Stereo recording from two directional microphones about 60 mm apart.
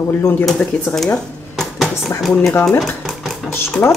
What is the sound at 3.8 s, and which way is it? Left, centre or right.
Speech, left.